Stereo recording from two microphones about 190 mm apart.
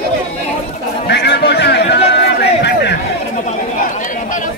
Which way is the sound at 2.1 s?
60° left (ahead or behind).